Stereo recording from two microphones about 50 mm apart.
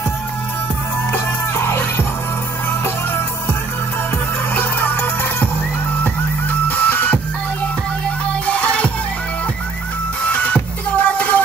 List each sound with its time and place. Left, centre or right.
1.1 s music: left
4.6 s music: left
6.7 s music: left
8.3 s music: left
10.2 s music: left